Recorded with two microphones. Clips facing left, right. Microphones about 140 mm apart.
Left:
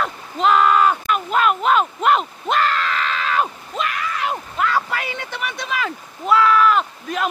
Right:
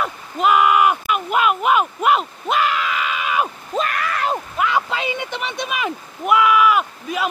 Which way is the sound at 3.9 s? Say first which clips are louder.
Right 2 dB; 60° right (ahead or behind).